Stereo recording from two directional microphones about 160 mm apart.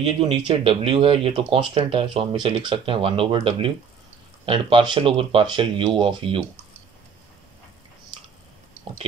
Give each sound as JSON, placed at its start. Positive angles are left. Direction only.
{"t": 0.0, "sound": "speech", "side_deg": -35}